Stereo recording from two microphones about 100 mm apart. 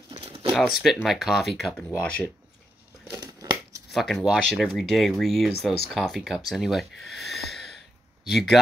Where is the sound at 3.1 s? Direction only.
40° right (ahead or behind).